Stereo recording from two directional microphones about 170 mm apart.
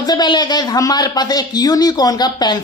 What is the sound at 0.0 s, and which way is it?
A woman's voice, 25° left (ahead or behind).